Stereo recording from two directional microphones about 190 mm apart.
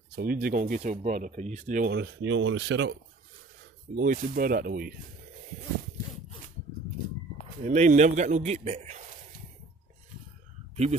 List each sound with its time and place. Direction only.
0.1 s speech: 50° right (ahead or behind); by 3.0 s 70° right (ahead or behind)
3.9 s speech: 50° right (ahead or behind)
7.6 s a man's voice: 40° right (ahead or behind)